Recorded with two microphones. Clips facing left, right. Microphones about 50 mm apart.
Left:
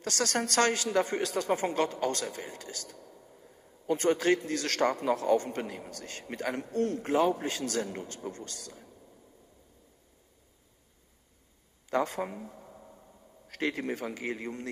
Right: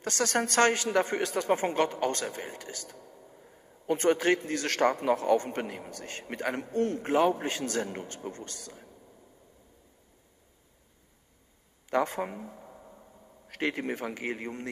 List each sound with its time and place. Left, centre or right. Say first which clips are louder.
0.0 s a man's voice: right 2 dB; right
3.1 s a sound: right 1 dB; centre
3.8 s a man's voice: right 1 dB; right
11.9 s speech: right 2 dB; right
12.2 s a sound: right 1 dB; centre
13.5 s a man's voice: right 1 dB; right